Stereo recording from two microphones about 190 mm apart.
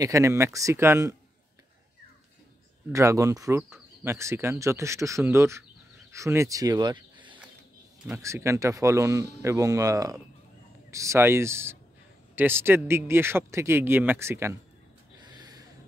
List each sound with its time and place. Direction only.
0.0 s speech: 15° right (ahead or behind)
2.9 s speech: 15° right (ahead or behind)
15.1 s a sound: 20° right (ahead or behind)